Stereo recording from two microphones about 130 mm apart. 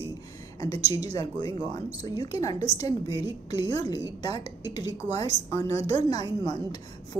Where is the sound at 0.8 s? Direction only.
30° left (ahead or behind).